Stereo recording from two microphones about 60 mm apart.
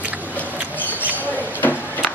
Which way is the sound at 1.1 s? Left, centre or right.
Left.